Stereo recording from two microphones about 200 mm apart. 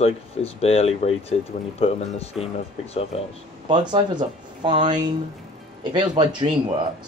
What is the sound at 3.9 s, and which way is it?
Speech, 25° right (ahead or behind).